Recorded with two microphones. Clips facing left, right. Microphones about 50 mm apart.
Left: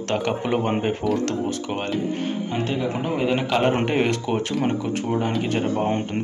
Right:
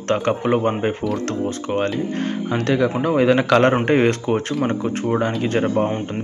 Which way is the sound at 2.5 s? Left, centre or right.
Right.